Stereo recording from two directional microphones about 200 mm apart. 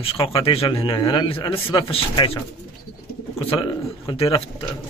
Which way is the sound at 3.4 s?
25° left (ahead or behind).